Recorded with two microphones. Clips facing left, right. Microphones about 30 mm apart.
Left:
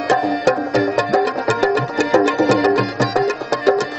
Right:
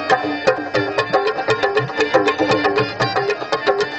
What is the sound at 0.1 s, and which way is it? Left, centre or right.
Music, right.